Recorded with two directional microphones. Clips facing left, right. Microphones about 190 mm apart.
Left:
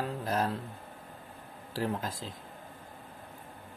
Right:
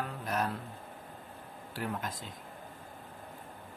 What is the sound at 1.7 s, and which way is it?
Speech, 30° left (ahead or behind).